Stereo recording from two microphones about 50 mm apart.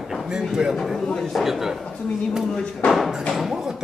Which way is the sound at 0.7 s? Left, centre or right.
Centre.